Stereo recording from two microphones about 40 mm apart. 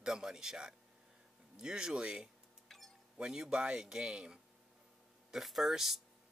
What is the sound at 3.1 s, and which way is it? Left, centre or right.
A man's voice, right.